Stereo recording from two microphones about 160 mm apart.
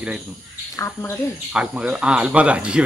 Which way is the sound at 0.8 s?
15° left (ahead or behind).